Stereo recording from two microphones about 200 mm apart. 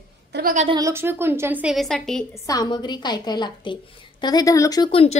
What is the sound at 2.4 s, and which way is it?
A woman's voice, 20° left (ahead or behind).